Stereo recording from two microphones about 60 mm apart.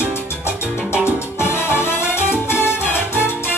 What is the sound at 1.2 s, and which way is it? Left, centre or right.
Music, left.